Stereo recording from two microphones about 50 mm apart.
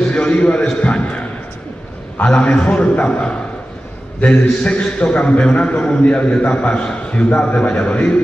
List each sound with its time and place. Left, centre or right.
0.1 s a man's voice: left
2.2 s a man's voice: left